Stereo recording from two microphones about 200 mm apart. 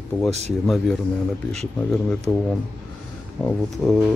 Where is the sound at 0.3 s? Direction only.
35° right (ahead or behind).